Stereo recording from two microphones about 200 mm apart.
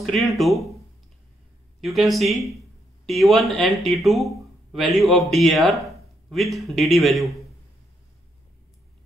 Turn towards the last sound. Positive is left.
turn(degrees=0)  # may be behind; listen again after turning